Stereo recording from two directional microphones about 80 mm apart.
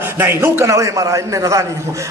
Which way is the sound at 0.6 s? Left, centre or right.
Right.